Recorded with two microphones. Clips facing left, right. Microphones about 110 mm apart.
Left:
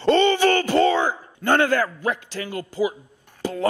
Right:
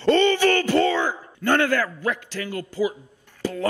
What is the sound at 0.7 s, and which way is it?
A man's voice, 20° left (ahead or behind).